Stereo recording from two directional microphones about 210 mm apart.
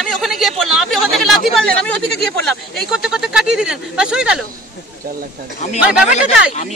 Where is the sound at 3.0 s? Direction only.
5° right (ahead or behind).